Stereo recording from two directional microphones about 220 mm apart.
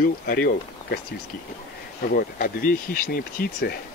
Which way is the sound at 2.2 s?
40° left (ahead or behind).